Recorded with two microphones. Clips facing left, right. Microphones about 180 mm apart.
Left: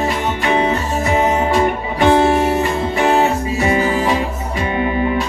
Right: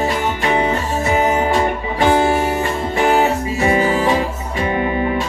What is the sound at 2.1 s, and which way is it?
Music, 30° left (ahead or behind).